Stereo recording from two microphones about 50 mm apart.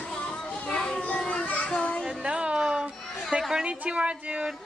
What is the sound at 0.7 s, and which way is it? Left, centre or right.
A child's voice, centre.